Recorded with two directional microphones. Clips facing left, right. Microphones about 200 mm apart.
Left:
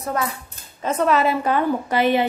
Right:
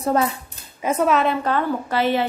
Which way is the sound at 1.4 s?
15° left (ahead or behind).